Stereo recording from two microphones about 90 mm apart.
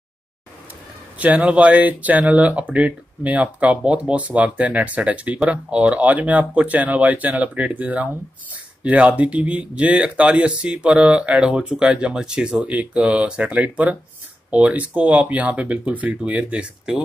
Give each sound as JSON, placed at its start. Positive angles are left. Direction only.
{"t": 1.1, "sound": "speech", "side_deg": -15}